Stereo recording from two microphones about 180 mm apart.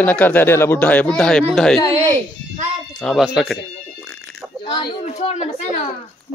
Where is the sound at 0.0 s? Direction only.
10° left (ahead or behind).